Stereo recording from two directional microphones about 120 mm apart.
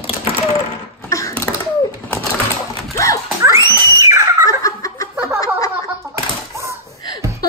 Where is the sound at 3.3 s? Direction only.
25° right (ahead or behind).